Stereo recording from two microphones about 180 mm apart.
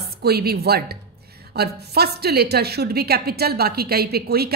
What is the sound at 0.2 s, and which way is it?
A woman's voice, 60° right (ahead or behind).